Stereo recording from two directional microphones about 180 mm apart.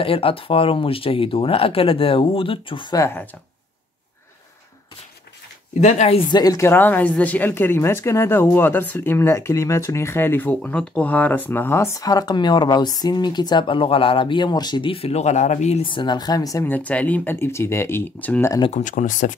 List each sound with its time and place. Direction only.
0.0 s speech: 30° left (ahead or behind); by 3.3 s 15° left (ahead or behind)
5.8 s speech: 40° left (ahead or behind); by 18.6 s 10° left (ahead or behind)
18.7 s speech: 40° left (ahead or behind)